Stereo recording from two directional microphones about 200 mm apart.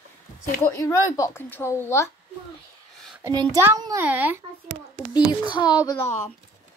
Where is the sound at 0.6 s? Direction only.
15° left (ahead or behind).